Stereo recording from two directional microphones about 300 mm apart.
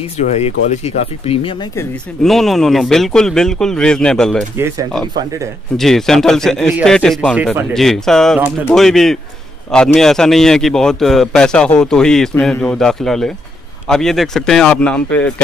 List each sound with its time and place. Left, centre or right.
0.4 s speech: left
2.2 s a man's voice: centre
4.6 s speech: centre
5.8 s a man's voice: centre